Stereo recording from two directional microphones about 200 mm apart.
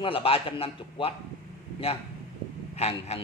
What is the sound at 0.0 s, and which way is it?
A man's voice, 25° left (ahead or behind).